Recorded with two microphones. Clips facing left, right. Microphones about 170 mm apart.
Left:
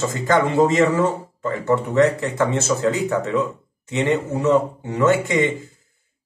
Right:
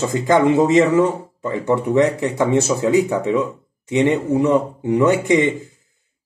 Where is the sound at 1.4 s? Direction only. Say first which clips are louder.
Right 1 dB; 15° right (ahead or behind).